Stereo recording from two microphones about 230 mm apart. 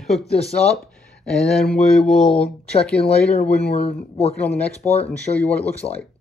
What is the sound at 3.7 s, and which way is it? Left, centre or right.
Speech, left.